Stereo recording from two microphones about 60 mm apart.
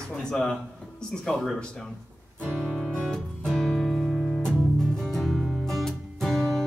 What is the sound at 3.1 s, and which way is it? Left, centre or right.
Music, centre.